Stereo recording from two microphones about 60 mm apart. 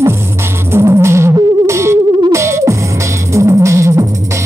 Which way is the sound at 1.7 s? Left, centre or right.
Right.